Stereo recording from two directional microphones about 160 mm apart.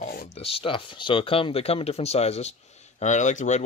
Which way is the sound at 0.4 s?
35° left (ahead or behind).